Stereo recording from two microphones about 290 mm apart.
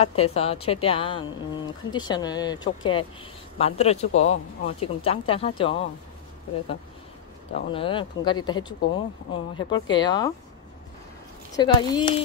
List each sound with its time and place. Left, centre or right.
0.0 s a woman's voice: centre
7.5 s a woman's voice: centre
11.5 s a woman's voice: centre